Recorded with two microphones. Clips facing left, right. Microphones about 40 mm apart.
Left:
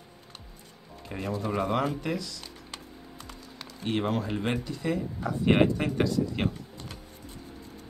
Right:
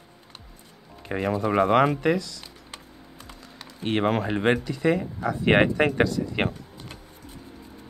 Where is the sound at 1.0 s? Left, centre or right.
Right.